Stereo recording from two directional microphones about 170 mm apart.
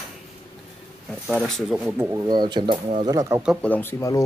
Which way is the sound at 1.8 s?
10° right (ahead or behind).